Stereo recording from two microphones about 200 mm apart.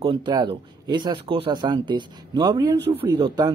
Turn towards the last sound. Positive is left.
turn(degrees=-20)  # may be behind; listen again after turning